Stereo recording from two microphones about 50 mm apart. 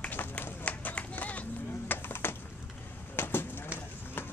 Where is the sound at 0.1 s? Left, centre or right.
Left.